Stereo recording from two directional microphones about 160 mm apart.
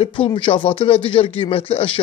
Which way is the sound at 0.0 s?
30° left (ahead or behind).